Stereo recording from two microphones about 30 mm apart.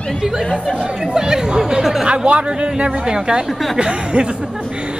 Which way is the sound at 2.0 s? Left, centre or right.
Right.